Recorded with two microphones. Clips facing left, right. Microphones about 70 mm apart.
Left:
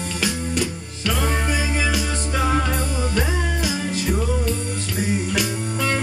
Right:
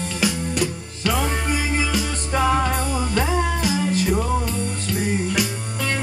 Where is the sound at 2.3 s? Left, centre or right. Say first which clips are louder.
Right 3 dB; right.